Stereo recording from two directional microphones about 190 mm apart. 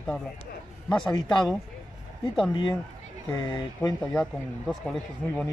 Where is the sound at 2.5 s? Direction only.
25° left (ahead or behind).